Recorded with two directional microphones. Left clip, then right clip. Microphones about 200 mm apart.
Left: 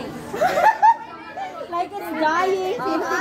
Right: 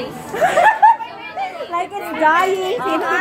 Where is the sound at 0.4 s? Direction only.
5° right (ahead or behind).